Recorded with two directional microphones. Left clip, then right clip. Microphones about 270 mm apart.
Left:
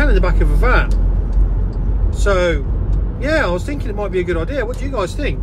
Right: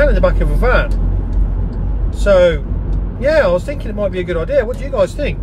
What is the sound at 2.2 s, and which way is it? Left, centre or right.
Speech, centre.